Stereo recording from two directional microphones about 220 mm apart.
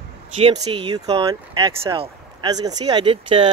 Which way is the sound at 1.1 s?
20° right (ahead or behind).